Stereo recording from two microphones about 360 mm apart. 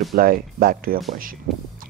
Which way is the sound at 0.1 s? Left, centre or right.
Right.